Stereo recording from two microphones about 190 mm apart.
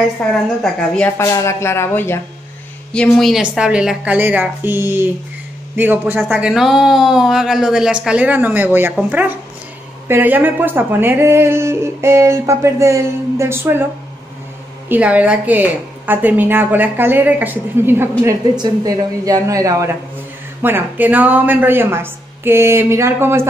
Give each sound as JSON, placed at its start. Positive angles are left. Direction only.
{"t": 0.2, "sound": "a woman's voice", "side_deg": 5}
{"t": 14.9, "sound": "speech", "side_deg": -5}